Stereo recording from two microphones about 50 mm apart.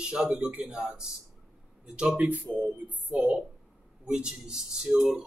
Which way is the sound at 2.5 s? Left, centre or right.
Right.